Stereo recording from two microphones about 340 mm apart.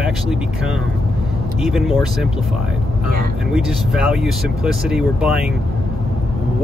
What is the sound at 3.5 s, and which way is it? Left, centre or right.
Speech, centre.